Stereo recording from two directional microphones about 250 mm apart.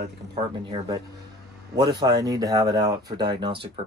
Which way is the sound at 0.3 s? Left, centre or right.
Centre.